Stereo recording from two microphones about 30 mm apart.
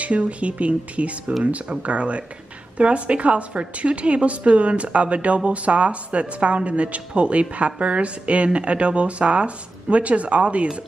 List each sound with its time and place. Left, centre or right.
0.0 s a woman's voice: right